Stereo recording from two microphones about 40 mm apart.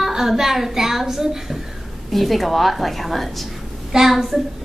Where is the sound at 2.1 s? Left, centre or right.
Centre.